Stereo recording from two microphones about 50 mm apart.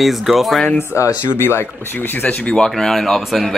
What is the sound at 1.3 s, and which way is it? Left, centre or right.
Speech, left.